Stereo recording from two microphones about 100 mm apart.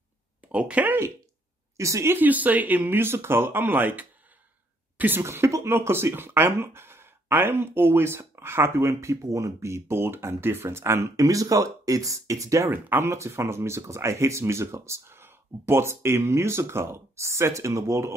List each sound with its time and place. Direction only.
0.5 s speech: 10° right (ahead or behind)
1.8 s speech: 30° right (ahead or behind)
2.1 s speech: 15° right (ahead or behind)